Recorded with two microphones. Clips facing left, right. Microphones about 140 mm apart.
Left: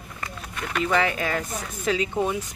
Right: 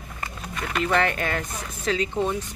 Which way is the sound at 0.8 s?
Centre (ahead or behind).